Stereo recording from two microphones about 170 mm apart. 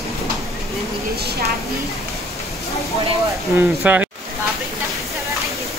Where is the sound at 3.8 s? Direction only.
5° right (ahead or behind).